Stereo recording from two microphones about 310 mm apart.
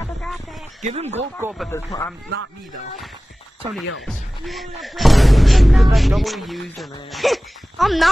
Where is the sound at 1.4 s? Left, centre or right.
Centre.